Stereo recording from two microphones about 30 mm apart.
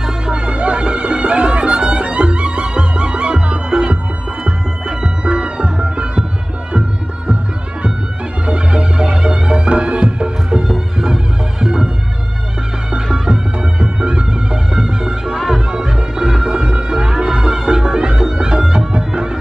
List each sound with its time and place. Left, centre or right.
0.3 s music: right
5.2 s music: right
8.5 s music: right
13.2 s music: right